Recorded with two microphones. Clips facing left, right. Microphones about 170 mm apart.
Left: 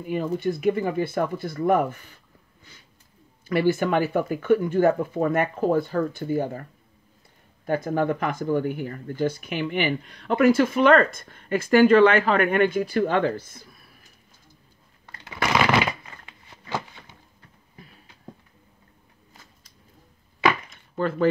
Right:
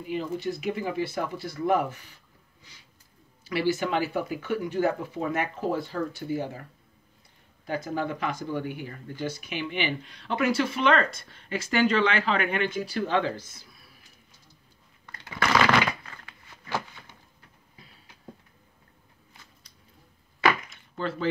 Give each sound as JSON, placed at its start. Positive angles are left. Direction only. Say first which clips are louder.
{"t": 0.0, "sound": "speech", "louder": "left 5 dB", "side_deg": 50}
{"t": 3.4, "sound": "speech", "louder": "left 5 dB", "side_deg": 50}
{"t": 7.6, "sound": "speech", "louder": "left 6 dB", "side_deg": 50}
{"t": 15.0, "sound": "shuffling cards", "louder": "left 1 dB", "side_deg": 20}
{"t": 20.7, "sound": "a sound", "louder": "left 6 dB", "side_deg": 50}